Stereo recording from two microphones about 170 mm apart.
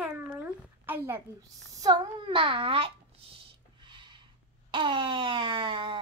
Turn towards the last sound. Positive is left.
turn(degrees=-30)  # may be behind; listen again after turning